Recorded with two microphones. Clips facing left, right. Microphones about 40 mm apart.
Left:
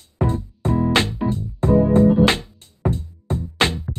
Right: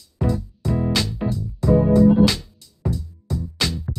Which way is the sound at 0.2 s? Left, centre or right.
Left.